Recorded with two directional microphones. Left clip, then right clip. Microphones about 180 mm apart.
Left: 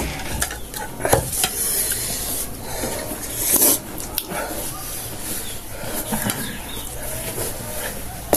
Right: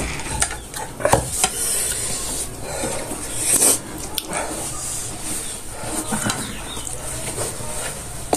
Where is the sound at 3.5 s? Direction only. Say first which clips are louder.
Right 1 dB; 40° left (ahead or behind).